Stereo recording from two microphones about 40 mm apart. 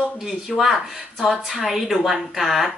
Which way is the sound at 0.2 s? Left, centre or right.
Centre.